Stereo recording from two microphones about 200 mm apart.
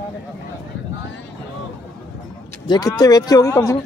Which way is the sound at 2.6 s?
20° left (ahead or behind).